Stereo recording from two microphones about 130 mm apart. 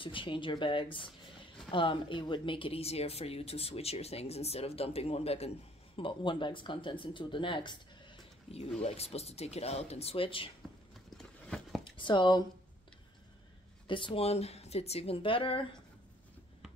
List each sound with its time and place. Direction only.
0.0 s speech: 40° left (ahead or behind)
5.9 s speech: 40° left (ahead or behind)
8.5 s speech: 50° left (ahead or behind)
11.1 s a sound: 5° left (ahead or behind)
11.8 s speech: 40° left (ahead or behind)
13.8 s speech: 40° left (ahead or behind)